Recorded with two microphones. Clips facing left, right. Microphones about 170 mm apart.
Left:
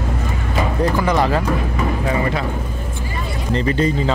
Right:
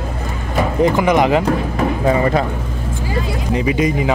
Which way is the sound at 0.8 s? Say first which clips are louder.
Right 5 dB; 20° right (ahead or behind).